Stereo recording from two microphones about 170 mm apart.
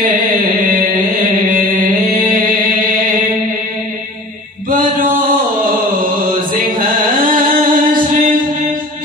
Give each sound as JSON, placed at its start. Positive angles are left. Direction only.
{"t": 2.1, "sound": "music", "side_deg": -55}
{"t": 4.6, "sound": "chant", "side_deg": -55}